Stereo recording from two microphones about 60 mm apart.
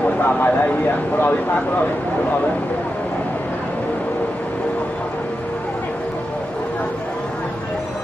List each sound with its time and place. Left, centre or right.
0.2 s speech: left